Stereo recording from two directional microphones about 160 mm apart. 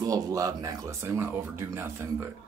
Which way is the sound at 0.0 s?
20° right (ahead or behind).